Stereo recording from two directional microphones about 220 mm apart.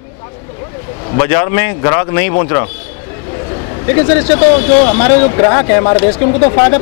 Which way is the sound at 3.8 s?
15° left (ahead or behind).